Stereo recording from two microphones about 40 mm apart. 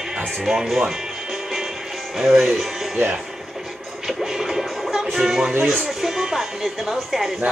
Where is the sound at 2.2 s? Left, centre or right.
Centre.